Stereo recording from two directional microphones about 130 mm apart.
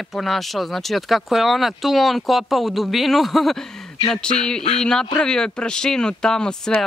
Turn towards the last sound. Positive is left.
turn(degrees=5)  # may be behind; listen again after turning